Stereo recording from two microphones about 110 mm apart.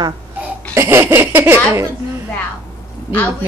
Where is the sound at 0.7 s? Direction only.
25° right (ahead or behind).